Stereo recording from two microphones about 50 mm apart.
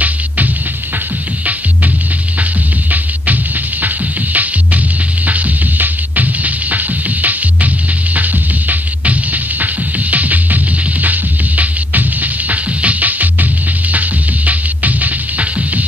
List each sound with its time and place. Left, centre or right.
3.8 s music: right